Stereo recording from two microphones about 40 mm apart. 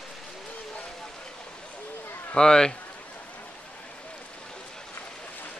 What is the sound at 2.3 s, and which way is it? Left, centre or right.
Speech, centre.